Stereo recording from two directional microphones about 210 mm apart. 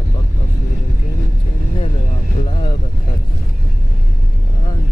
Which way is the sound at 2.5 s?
20° left (ahead or behind).